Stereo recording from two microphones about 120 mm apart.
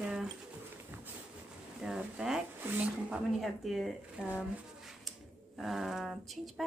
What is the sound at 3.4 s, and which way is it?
Speech, centre (ahead or behind).